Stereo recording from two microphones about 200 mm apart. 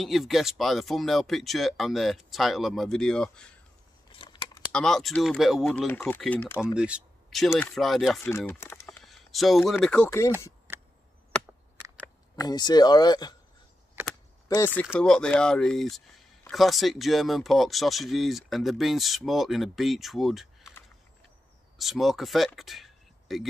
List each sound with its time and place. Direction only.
0.0 s speech: centre (ahead or behind)
4.1 s scissors: 25° left (ahead or behind)
4.7 s speech: centre (ahead or behind)
5.9 s speech: 10° left (ahead or behind)
6.7 s speech: 5° right (ahead or behind)
8.2 s speech: 10° left (ahead or behind)
8.8 s speech: centre (ahead or behind)
12.0 s speech: 20° left (ahead or behind)
14.8 s speech: 5° left (ahead or behind)
21.7 s speech: centre (ahead or behind)